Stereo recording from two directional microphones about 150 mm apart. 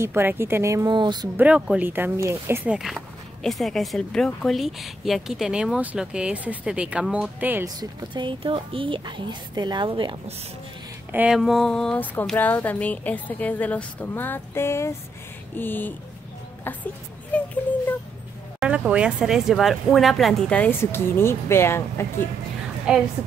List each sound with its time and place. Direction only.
0.0 s speech: 15° right (ahead or behind)
1.3 s speech: 10° right (ahead or behind)
7.6 s a woman's voice: 25° right (ahead or behind)
11.1 s speech: 10° right (ahead or behind)
11.3 s speech: centre (ahead or behind)
18.6 s speech: 5° right (ahead or behind); by 22.0 s 15° left (ahead or behind)
22.9 s speech: 5° right (ahead or behind)